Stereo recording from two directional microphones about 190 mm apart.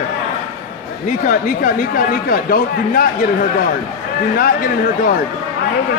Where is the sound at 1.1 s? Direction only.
45° left (ahead or behind).